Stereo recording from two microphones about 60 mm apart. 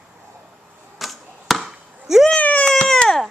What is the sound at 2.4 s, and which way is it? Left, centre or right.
Baby cry, left.